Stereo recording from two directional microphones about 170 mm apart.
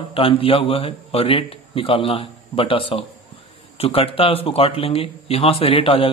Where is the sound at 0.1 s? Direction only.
30° left (ahead or behind).